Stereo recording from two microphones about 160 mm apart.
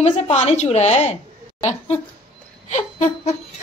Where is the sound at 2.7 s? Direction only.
45° left (ahead or behind).